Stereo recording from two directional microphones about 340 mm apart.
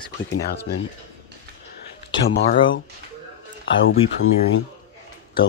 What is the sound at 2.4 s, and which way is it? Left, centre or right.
Speech, left.